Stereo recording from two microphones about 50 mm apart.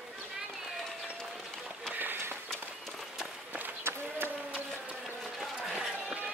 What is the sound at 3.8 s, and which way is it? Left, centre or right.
Run, right.